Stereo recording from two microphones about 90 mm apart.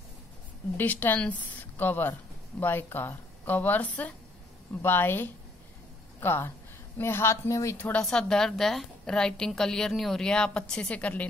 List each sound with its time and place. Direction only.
0.7 s a woman's voice: 20° left (ahead or behind)
7.7 s speech: 20° left (ahead or behind)
8.0 s a woman's voice: 5° left (ahead or behind)